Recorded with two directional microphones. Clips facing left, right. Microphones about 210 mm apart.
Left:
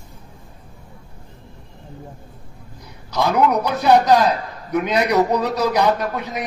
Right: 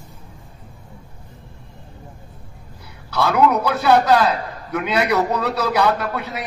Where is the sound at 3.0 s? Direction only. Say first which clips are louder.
Right 1 dB; 15° left (ahead or behind).